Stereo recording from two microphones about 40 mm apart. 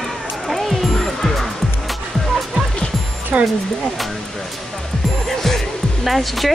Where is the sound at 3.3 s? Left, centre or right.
Right.